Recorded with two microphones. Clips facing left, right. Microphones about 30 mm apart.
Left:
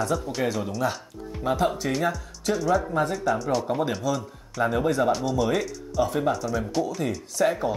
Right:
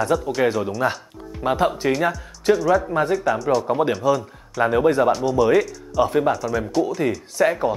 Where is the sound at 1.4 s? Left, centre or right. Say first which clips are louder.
Right 4 dB; right.